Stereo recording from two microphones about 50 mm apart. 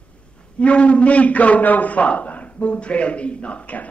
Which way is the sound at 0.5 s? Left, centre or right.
Left.